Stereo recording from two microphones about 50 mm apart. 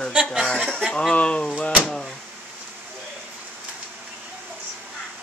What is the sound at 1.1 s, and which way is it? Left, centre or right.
Speech, left.